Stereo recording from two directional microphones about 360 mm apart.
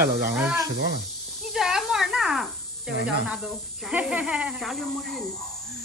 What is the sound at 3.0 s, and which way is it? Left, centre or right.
Speech, centre.